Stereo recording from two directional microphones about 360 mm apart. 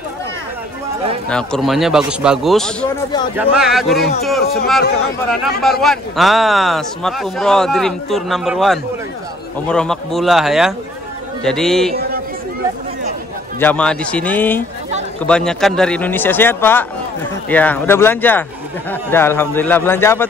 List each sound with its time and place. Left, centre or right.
1.3 s a man's voice: centre
5.6 s a man's voice: centre
11.9 s a sound: right
13.6 s a man's voice: centre